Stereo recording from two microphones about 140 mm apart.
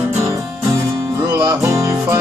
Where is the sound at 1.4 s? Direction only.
25° right (ahead or behind).